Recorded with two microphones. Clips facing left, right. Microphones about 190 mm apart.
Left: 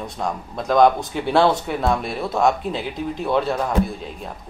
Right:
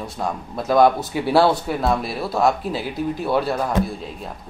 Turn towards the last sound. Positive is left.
turn(degrees=-5)  # may be behind; listen again after turning